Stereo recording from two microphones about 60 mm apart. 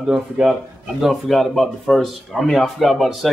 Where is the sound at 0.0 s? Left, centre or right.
Centre.